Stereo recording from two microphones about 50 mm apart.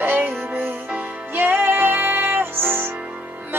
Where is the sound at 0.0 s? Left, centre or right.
Right.